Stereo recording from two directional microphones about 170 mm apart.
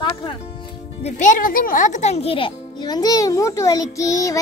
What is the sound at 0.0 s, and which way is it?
Music, 25° left (ahead or behind).